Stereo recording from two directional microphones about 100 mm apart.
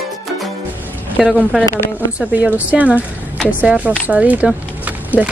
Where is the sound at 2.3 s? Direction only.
15° right (ahead or behind).